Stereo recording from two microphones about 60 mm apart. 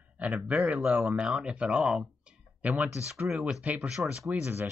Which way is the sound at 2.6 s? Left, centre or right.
Right.